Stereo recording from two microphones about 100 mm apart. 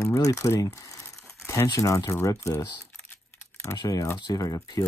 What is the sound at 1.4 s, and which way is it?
Crumpling, 25° left (ahead or behind).